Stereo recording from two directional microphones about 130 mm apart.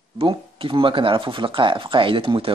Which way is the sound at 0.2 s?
40° right (ahead or behind).